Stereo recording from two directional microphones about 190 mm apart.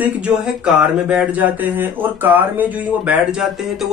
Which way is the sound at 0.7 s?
5° right (ahead or behind).